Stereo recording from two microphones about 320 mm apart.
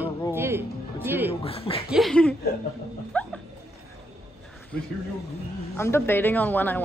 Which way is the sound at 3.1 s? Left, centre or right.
Centre.